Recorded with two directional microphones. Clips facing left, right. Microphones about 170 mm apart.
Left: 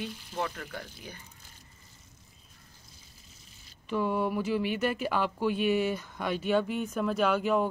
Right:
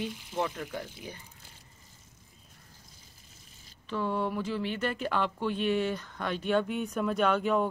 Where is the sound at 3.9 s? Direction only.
10° left (ahead or behind).